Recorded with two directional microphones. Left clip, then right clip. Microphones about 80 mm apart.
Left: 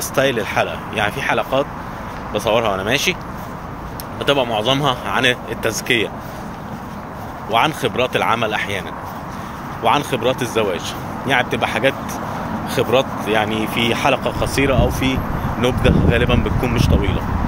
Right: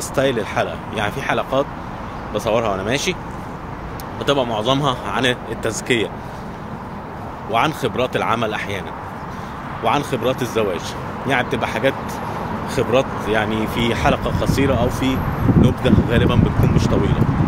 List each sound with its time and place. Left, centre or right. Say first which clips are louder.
0.1 s speech: left 2 dB; centre
4.3 s speech: left 1 dB; right
7.5 s speech: left 2 dB; right
9.8 s speech: left 2 dB; right
16.7 s speech: even; centre